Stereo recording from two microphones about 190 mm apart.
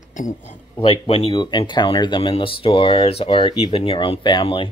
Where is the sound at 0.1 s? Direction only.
45° left (ahead or behind).